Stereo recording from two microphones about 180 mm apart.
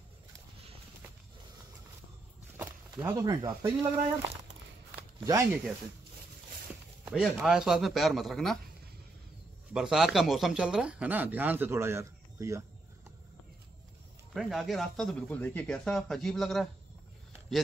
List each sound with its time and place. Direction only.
3.0 s speech: 25° right (ahead or behind)
5.2 s speech: 15° right (ahead or behind)
7.1 s speech: 5° right (ahead or behind)
9.8 s speech: 5° right (ahead or behind)
14.3 s speech: centre (ahead or behind)